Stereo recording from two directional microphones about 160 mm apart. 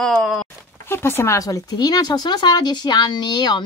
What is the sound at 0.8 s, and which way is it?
Speech, 15° left (ahead or behind).